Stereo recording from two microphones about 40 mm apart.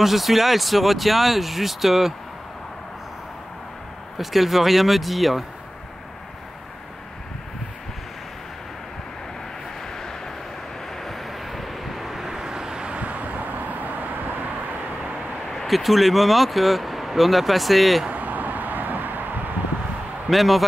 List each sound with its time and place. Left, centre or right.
0.0 s speech: centre
4.2 s speech: centre
9.8 s vehicle: centre
12.8 s vehicle: right
15.4 s speech: centre
18.1 s a sound: right
20.2 s speech: centre